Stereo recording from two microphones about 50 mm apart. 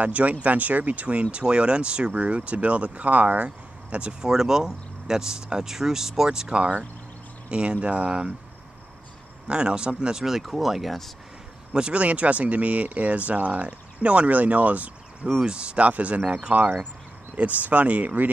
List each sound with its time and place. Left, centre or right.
0.0 s speech: right
3.4 s a sound: right
4.2 s speech: centre
9.5 s speech: centre
11.7 s speech: right
15.2 s speech: centre; by 18.3 s right